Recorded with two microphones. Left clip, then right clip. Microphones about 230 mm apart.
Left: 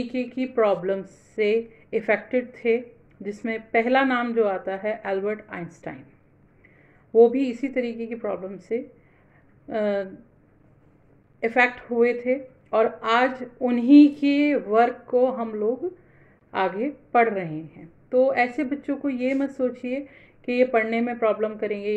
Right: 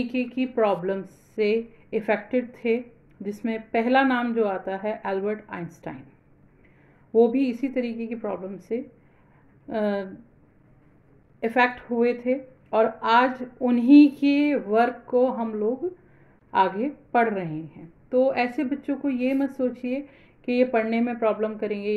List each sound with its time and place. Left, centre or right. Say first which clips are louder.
0.0 s speech: right 1 dB; centre
7.2 s speech: left 3 dB; centre
11.3 s a woman's voice: left 1 dB; centre
16.5 s speech: right 3 dB; centre